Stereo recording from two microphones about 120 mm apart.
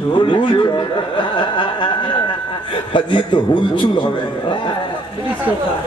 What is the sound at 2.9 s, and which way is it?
A man's voice, 45° left (ahead or behind).